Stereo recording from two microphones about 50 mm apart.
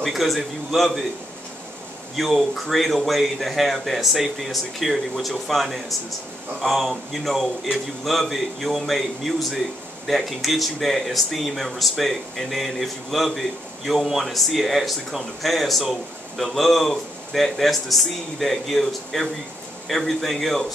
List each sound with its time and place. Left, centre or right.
0.0 s speech: centre
2.1 s speech: centre